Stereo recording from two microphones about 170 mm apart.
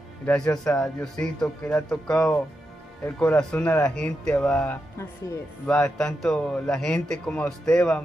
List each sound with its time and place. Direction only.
0.2 s a man's voice: 5° left (ahead or behind)
4.9 s speech: 15° left (ahead or behind)
5.8 s a man's voice: 5° left (ahead or behind)